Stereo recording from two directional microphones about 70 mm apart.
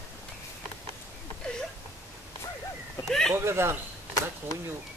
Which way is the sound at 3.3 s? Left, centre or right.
Right.